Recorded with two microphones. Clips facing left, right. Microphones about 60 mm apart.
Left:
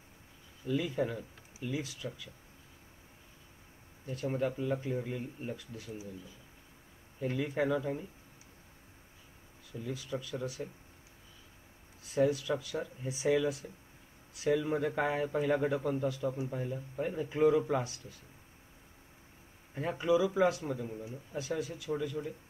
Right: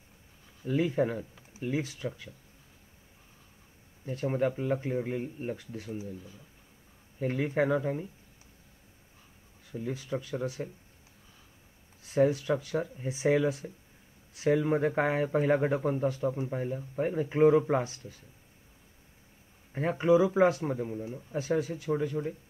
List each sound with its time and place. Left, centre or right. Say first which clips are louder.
0.7 s a man's voice: right 5 dB; right
4.0 s a man's voice: right 4 dB; right
7.2 s a man's voice: right 4 dB; right
9.7 s a man's voice: right 4 dB; right
12.1 s a man's voice: right 4 dB; right
19.7 s a man's voice: right 5 dB; right